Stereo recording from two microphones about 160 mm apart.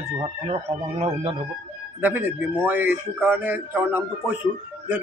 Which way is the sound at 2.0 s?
10° right (ahead or behind).